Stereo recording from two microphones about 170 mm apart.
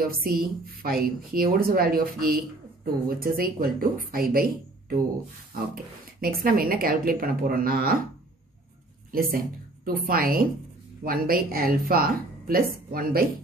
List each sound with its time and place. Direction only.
0.1 s a woman's voice: 60° right (ahead or behind)
6.2 s a woman's voice: 60° right (ahead or behind)
9.8 s a woman's voice: 60° right (ahead or behind)